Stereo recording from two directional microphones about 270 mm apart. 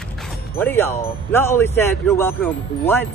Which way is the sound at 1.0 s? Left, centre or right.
Centre.